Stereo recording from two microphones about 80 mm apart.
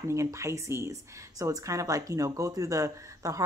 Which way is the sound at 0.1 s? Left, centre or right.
Right.